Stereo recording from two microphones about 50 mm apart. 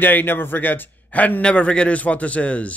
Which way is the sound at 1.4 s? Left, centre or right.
Left.